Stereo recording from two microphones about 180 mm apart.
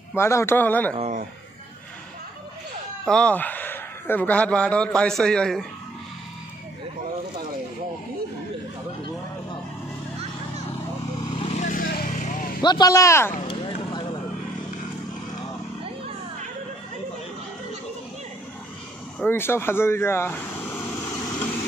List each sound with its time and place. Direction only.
0.1 s a man's voice: 15° left (ahead or behind)
0.9 s speech: 35° right (ahead or behind)
3.1 s a man's voice: 5° left (ahead or behind)
11.3 s vehicle: 40° left (ahead or behind)
12.6 s a man's voice: 20° left (ahead or behind)
13.4 s a sound: 30° left (ahead or behind)
19.1 s speech: 10° left (ahead or behind)